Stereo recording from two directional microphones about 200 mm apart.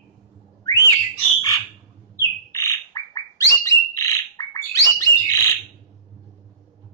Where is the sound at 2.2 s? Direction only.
15° left (ahead or behind).